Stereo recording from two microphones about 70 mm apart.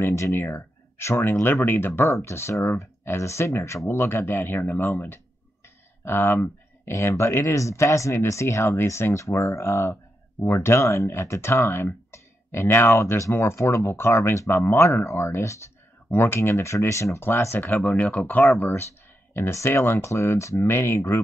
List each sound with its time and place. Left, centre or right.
0.0 s speech: left
6.0 s speech: left
18.4 s speech: left